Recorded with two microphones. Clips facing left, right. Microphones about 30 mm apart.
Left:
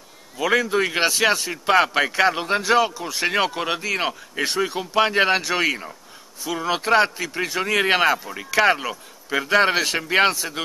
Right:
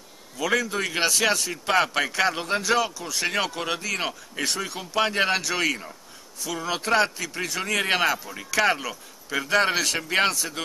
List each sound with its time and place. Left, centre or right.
0.4 s speech: centre